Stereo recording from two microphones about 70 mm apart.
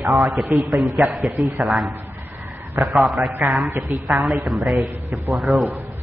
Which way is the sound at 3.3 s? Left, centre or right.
Right.